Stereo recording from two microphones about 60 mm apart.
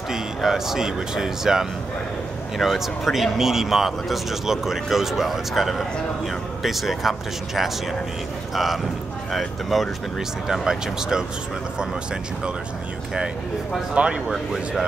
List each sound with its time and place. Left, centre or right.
0.1 s speech: centre
9.3 s speech: centre
13.9 s speech: centre